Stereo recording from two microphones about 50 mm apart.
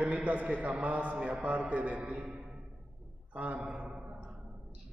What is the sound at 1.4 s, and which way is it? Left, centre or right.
Speech, right.